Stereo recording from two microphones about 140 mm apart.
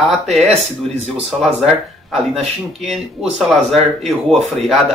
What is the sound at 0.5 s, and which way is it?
Speech, 50° right (ahead or behind).